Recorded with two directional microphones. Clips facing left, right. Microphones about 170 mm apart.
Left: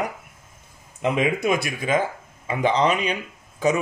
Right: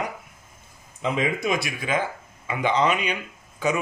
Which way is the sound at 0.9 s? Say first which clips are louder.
Left 3 dB; 60° left (ahead or behind).